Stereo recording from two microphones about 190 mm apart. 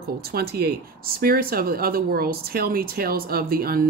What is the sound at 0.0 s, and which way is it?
Speech, 55° right (ahead or behind).